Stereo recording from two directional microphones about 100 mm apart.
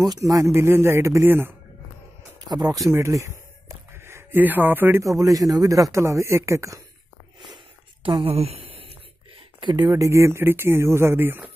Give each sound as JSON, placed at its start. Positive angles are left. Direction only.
{"t": 0.1, "sound": "speech", "side_deg": -35}
{"t": 2.4, "sound": "speech", "side_deg": -40}
{"t": 2.9, "sound": "a sound", "side_deg": -30}
{"t": 5.0, "sound": "a man's voice", "side_deg": -35}
{"t": 7.5, "sound": "a sound", "side_deg": -60}
{"t": 9.6, "sound": "speech", "side_deg": -50}
{"t": 9.9, "sound": "speech", "side_deg": -30}